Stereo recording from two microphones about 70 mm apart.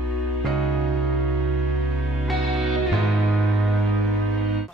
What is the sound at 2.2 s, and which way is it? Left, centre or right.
Music, centre.